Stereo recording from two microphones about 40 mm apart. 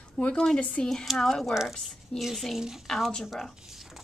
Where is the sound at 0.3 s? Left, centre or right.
Centre.